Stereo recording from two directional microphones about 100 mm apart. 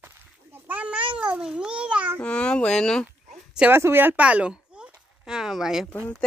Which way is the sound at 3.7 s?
20° right (ahead or behind).